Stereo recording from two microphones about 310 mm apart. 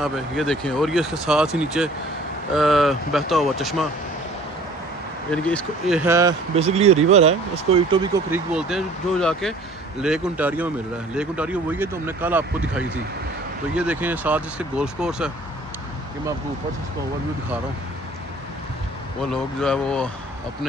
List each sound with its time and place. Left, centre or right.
0.0 s speech: centre
5.3 s speech: centre
8.5 s speech: centre
19.6 s speech: centre